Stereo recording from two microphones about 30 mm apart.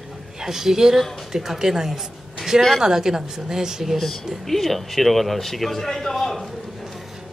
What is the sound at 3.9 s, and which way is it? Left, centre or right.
A man's voice, centre.